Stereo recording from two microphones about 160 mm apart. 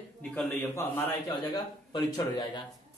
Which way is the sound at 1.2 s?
25° left (ahead or behind).